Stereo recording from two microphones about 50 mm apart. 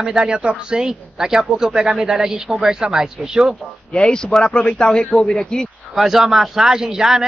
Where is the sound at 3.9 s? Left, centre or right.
Centre.